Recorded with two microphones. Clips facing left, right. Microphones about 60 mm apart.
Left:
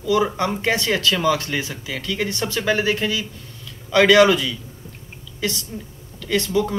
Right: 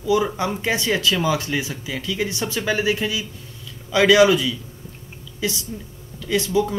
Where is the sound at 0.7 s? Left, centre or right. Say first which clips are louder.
Even; centre.